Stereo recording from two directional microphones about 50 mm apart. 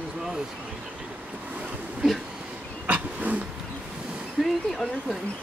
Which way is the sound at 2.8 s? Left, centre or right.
Right.